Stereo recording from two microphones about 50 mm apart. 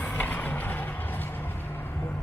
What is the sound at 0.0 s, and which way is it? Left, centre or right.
Music, left.